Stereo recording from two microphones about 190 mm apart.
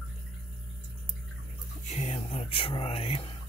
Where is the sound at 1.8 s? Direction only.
35° left (ahead or behind).